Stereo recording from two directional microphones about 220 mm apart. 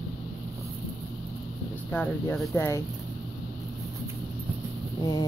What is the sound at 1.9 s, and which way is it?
Speech, 5° left (ahead or behind).